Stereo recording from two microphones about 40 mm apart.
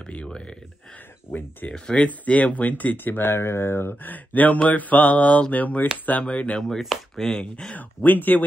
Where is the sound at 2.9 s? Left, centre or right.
Left.